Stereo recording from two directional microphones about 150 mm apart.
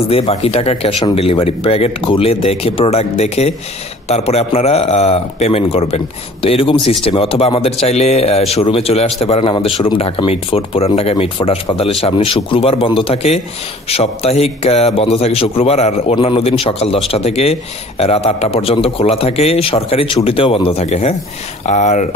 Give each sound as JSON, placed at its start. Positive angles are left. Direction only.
{"t": 0.1, "sound": "a man's voice", "side_deg": 40}